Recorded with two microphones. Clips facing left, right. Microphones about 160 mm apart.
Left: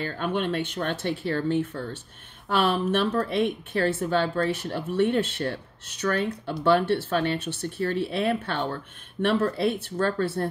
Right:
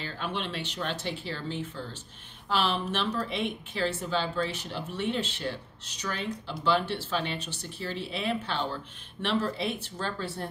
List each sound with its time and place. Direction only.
0.0 s speech: 50° left (ahead or behind)